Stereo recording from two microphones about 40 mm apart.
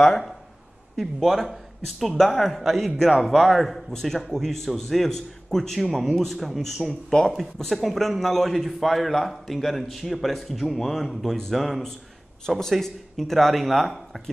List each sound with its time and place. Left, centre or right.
0.9 s a man's voice: centre
7.1 s a man's voice: centre
7.5 s a man's voice: centre
12.4 s a man's voice: centre